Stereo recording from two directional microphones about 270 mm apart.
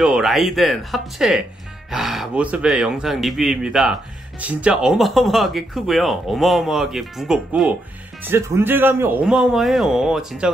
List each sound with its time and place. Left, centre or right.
0.0 s speech: centre